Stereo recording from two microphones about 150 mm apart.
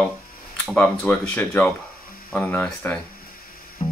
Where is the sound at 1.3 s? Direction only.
15° left (ahead or behind).